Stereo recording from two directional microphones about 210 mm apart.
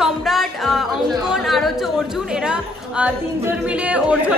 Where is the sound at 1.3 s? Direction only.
Centre (ahead or behind).